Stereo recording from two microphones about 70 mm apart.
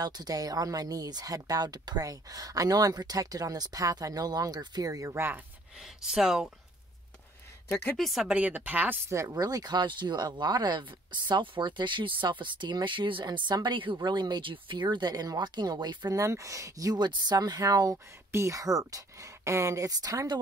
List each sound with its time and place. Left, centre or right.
0.0 s speech: right
5.1 s speech: right
5.8 s speech: centre
8.0 s speech: centre
8.4 s speech: right
9.3 s speech: right
16.2 s speech: right
16.9 s speech: right
17.9 s speech: right
18.6 s speech: right
19.9 s speech: right